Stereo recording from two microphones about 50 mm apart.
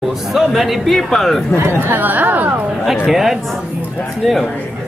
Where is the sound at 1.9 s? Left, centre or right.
Right.